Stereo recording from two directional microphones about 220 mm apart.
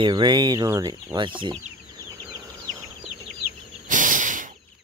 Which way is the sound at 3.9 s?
35° right (ahead or behind).